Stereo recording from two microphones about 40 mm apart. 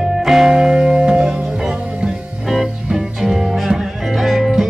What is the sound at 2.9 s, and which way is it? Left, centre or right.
Music, centre.